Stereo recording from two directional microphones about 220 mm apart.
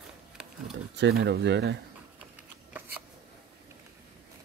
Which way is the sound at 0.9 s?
50° right (ahead or behind).